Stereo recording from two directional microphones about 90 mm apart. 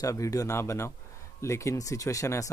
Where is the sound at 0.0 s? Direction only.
40° left (ahead or behind).